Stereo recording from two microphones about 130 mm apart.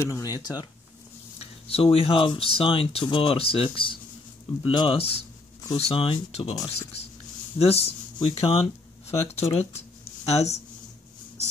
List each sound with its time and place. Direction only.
0.0 s speech: 25° left (ahead or behind)
1.4 s speech: 45° left (ahead or behind)